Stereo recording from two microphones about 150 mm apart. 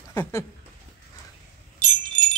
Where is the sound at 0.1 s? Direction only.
15° left (ahead or behind).